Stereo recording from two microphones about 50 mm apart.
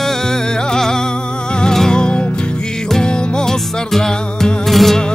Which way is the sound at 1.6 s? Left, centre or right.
Centre.